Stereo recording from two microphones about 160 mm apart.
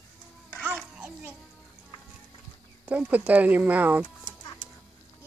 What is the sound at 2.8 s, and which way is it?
Speech, 10° right (ahead or behind).